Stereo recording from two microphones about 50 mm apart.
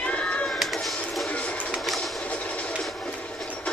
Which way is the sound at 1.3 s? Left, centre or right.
Left.